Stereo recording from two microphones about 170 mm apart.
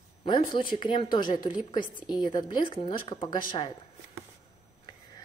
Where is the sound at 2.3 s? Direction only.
30° left (ahead or behind).